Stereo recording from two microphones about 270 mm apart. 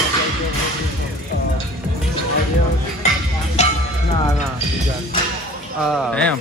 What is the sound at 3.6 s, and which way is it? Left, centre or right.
Music, left.